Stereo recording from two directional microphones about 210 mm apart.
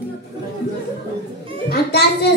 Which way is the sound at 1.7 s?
50° left (ahead or behind).